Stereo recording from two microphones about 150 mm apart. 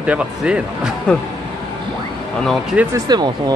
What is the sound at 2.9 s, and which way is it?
Speech, 30° right (ahead or behind).